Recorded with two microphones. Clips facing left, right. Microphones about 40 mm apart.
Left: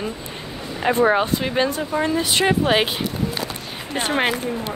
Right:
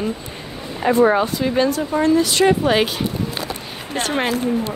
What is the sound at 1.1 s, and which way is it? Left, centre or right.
Speech, left.